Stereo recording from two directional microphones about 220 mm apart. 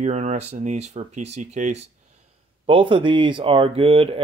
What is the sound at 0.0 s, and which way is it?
Speech, 30° right (ahead or behind).